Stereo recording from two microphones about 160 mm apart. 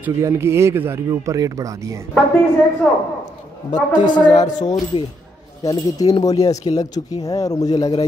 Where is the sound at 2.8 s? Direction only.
5° left (ahead or behind).